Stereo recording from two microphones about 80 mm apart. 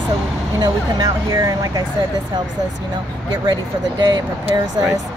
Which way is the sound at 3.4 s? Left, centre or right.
Right.